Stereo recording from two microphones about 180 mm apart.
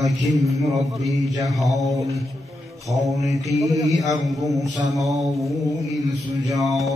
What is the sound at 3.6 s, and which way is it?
Speech, 20° right (ahead or behind).